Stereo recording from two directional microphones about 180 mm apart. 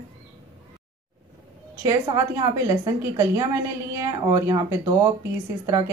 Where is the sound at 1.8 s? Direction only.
20° right (ahead or behind).